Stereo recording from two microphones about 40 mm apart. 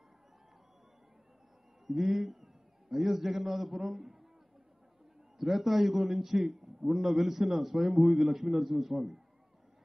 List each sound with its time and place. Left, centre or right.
1.9 s a man's voice: centre
5.4 s a man's voice: centre